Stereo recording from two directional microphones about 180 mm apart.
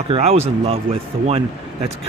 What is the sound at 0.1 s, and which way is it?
Speech, 35° right (ahead or behind).